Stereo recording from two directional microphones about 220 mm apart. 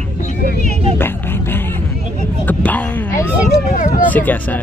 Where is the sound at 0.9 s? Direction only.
10° left (ahead or behind).